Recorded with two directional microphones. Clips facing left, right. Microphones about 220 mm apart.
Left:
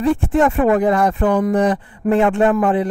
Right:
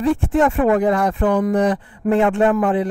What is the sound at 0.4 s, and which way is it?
A man's voice, 25° left (ahead or behind).